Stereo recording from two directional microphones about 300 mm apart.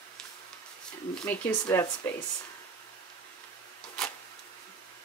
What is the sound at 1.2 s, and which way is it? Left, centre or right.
A woman's voice, centre.